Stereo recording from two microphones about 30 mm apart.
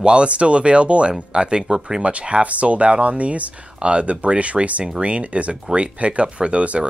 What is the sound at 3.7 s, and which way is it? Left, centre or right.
Speech, right.